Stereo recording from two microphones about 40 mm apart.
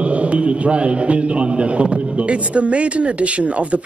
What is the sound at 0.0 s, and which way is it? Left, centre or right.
A man's voice, right.